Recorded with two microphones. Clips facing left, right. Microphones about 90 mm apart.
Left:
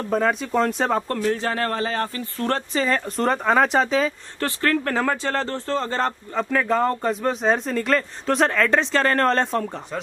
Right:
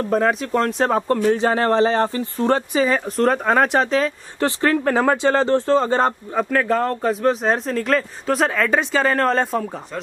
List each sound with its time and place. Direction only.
0.1 s a man's voice: centre (ahead or behind)
1.0 s speech: 15° right (ahead or behind)
4.4 s speech: 20° right (ahead or behind)
6.5 s a man's voice: centre (ahead or behind)